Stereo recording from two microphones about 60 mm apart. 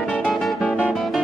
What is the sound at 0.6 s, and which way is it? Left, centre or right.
Music, left.